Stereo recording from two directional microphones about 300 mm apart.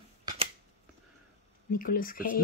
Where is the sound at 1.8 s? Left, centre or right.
Left.